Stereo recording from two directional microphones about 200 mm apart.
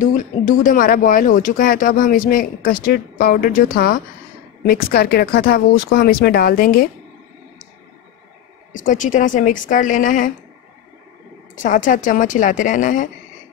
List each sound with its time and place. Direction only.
0.0 s speech: 40° left (ahead or behind)
8.7 s speech: 40° left (ahead or behind)
11.5 s speech: 40° left (ahead or behind)